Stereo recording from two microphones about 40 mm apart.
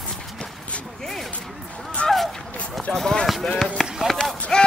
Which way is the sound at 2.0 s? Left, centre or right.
Left.